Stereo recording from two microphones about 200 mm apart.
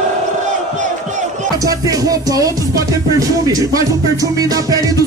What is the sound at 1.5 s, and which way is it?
Music, 15° right (ahead or behind).